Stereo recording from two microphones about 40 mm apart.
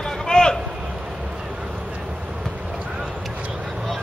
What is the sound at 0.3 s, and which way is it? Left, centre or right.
Vehicle, centre.